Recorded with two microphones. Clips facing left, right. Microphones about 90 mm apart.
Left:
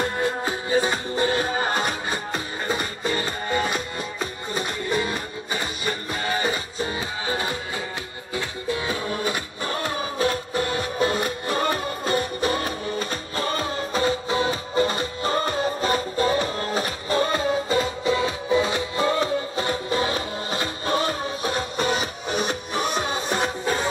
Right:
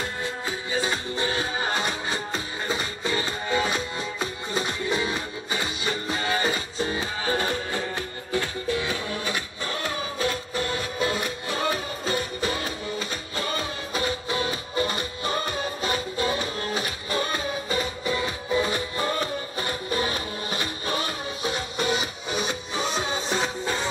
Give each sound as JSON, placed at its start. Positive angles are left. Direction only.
{"t": 0.0, "sound": "music", "side_deg": 50}
{"t": 6.9, "sound": "music", "side_deg": 15}
{"t": 8.7, "sound": "music", "side_deg": 35}